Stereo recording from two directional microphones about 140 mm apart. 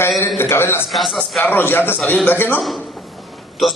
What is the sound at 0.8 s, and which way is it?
Speech, centre (ahead or behind).